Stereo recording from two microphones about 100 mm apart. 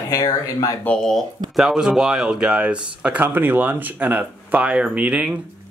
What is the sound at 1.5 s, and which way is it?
Speech, 5° right (ahead or behind).